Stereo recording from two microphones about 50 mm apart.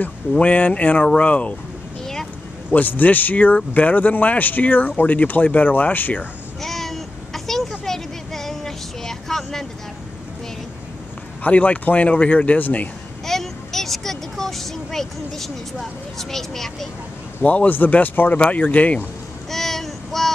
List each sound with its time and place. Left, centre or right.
0.4 s speech: left
1.0 s speech: centre
2.7 s speech: left
6.6 s a sound: centre
7.8 s vehicle: centre
11.4 s speech: left
13.2 s vehicle: centre
17.4 s speech: left
19.5 s child singing: centre